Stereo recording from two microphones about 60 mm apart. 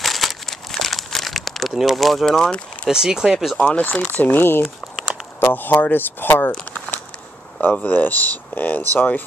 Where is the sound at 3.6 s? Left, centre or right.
Left.